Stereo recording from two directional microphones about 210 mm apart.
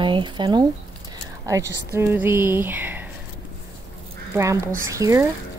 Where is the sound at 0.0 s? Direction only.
25° right (ahead or behind).